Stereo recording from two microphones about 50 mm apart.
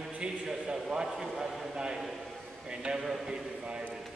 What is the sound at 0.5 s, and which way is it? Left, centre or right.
A man's voice, centre.